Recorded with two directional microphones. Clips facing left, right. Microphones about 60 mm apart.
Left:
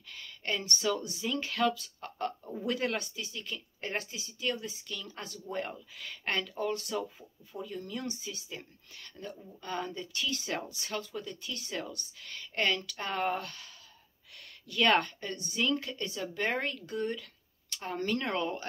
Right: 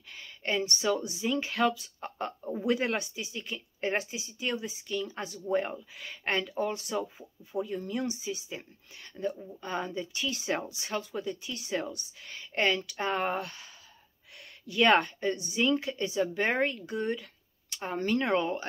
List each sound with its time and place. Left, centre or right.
0.1 s speech: centre
14.7 s speech: centre